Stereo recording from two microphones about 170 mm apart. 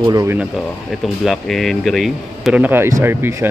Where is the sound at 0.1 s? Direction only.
20° right (ahead or behind).